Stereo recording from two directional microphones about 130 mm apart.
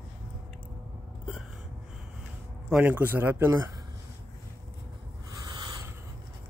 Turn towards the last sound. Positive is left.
turn(degrees=-30)  # may be behind; listen again after turning